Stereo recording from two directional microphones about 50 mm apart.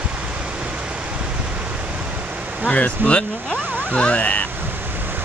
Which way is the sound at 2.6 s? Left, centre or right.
Left.